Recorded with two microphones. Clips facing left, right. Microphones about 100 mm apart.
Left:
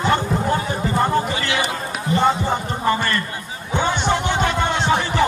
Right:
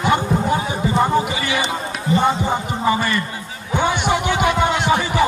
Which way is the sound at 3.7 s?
10° right (ahead or behind).